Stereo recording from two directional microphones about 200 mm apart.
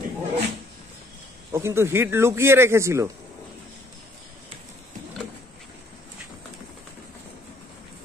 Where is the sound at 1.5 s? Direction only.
15° right (ahead or behind).